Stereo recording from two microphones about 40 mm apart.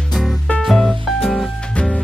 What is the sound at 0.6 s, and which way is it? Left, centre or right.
Music, centre.